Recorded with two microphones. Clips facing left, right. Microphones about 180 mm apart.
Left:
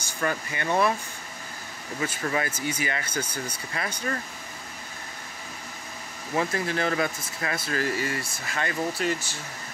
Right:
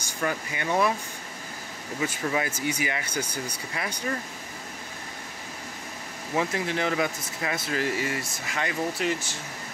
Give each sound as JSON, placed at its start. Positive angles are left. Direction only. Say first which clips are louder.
{"t": 0.0, "sound": "speech", "louder": "left 1 dB", "side_deg": -15}
{"t": 2.0, "sound": "speech", "louder": "even", "side_deg": -15}
{"t": 6.3, "sound": "speech", "louder": "even", "side_deg": -20}